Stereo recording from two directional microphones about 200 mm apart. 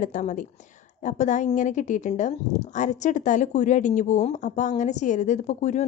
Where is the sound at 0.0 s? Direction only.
40° left (ahead or behind).